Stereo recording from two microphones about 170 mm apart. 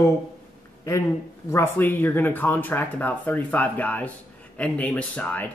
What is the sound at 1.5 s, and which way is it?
Speech, 15° left (ahead or behind).